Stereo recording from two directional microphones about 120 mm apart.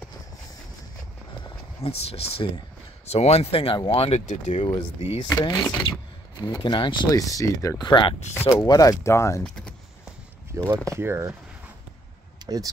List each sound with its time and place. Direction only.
1.8 s speech: 55° left (ahead or behind)
4.6 s speech: 45° left (ahead or behind)
5.4 s speech: 35° left (ahead or behind)
7.1 s speech: 30° left (ahead or behind)
8.6 s speech: 30° left (ahead or behind)
9.4 s vehicle: 5° left (ahead or behind)
10.5 s speech: 25° right (ahead or behind)
12.4 s speech: 30° right (ahead or behind)